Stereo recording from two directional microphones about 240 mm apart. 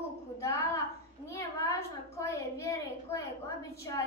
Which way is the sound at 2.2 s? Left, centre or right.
Centre.